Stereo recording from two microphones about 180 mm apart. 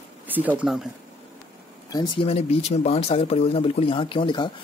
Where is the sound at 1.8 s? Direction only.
20° left (ahead or behind).